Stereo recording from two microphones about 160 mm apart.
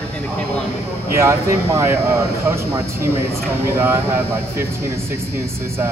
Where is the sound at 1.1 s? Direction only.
15° right (ahead or behind).